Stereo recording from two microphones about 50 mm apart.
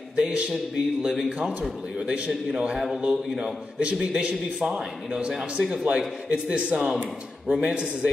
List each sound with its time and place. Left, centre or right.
0.2 s a man's voice: centre
2.0 s a man's voice: right